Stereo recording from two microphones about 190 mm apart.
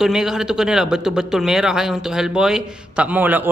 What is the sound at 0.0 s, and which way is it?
A man's voice, centre (ahead or behind).